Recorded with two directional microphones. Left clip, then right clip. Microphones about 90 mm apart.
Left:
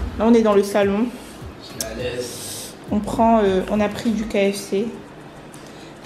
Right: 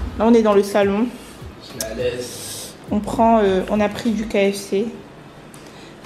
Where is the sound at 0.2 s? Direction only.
15° right (ahead or behind).